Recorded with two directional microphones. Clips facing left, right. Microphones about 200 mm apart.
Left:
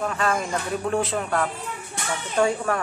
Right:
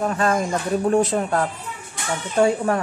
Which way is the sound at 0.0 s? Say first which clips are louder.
Right 4 dB; 40° right (ahead or behind).